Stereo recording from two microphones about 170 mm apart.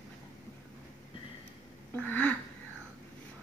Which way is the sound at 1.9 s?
10° left (ahead or behind).